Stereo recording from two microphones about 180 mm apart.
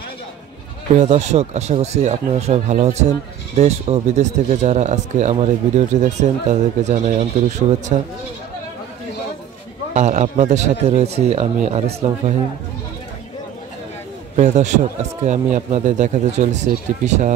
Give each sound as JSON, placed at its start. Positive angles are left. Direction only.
{"t": 0.9, "sound": "speech", "side_deg": -40}
{"t": 9.9, "sound": "speech", "side_deg": -40}
{"t": 14.3, "sound": "speech", "side_deg": -40}